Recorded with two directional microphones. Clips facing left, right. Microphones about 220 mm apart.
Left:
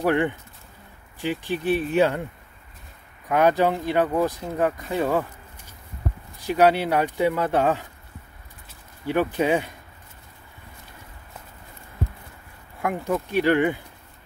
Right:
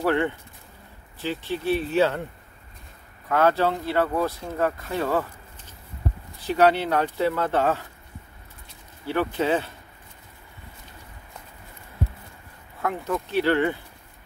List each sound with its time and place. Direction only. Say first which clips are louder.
0.0 s speech: left 1 dB; 15° left (ahead or behind)
3.3 s speech: left 2 dB; 15° left (ahead or behind)
9.0 s speech: left 2 dB; 15° left (ahead or behind)
12.8 s speech: left 2 dB; 10° left (ahead or behind)